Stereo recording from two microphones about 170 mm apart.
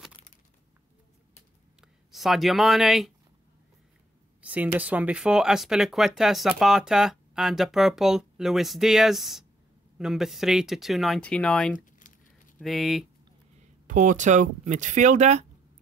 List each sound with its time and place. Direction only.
1.8 s speech: centre (ahead or behind)
4.4 s speech: 10° right (ahead or behind)
12.0 s a sound: 50° left (ahead or behind)
12.5 s speech: centre (ahead or behind)
13.8 s speech: 50° right (ahead or behind)